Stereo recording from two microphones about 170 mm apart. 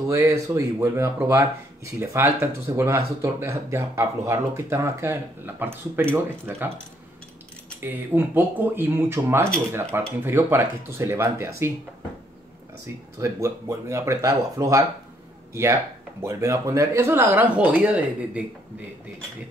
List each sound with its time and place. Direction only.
0.1 s speech: 15° right (ahead or behind)
7.8 s speech: 10° right (ahead or behind)
13.2 s speech: 15° right (ahead or behind)